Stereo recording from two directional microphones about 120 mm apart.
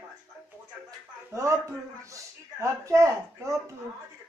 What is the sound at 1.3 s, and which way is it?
Speech, 25° right (ahead or behind).